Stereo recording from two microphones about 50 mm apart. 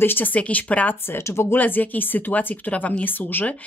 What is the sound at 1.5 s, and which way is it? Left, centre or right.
Speech, left.